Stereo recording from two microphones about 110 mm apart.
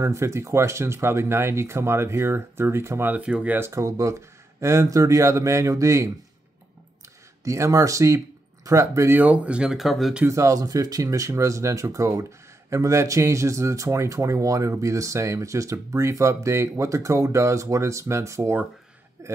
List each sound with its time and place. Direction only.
0.0 s speech: 25° right (ahead or behind); by 3.5 s 10° right (ahead or behind)
3.5 s speech: 25° right (ahead or behind)
7.4 s speech: 30° right (ahead or behind)
9.2 s speech: 10° right (ahead or behind)
10.2 s speech: 30° right (ahead or behind)